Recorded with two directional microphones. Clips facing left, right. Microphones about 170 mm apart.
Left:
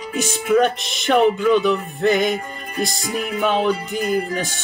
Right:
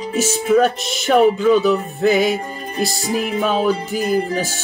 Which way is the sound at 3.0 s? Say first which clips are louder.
Right 4 dB; 35° right (ahead or behind).